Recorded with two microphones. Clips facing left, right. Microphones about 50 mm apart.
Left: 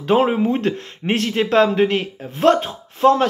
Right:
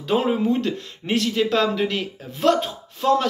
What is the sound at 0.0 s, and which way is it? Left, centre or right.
Speech, left.